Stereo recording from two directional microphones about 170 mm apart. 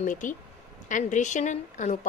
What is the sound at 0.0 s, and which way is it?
A woman's voice, 50° left (ahead or behind).